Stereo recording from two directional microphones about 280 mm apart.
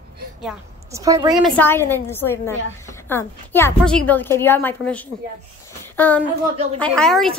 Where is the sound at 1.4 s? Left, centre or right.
Centre.